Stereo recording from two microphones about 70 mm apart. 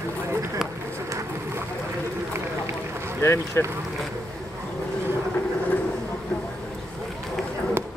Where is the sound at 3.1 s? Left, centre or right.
Left.